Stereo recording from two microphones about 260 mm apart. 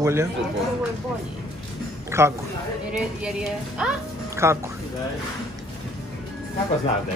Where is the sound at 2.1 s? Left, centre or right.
Centre.